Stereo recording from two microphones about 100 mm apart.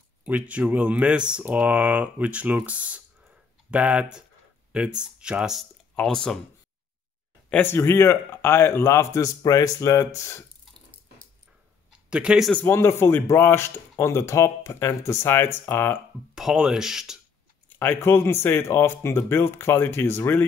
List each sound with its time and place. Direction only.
0.2 s speech: 15° right (ahead or behind); by 6.4 s 5° left (ahead or behind)
7.6 s speech: 25° left (ahead or behind)
12.1 s speech: 10° right (ahead or behind)
12.6 s speech: 25° left (ahead or behind)
16.3 s speech: 5° right (ahead or behind)
17.7 s speech: 20° left (ahead or behind)